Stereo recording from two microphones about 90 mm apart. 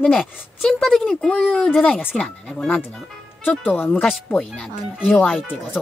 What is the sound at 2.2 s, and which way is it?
Speech, 5° left (ahead or behind).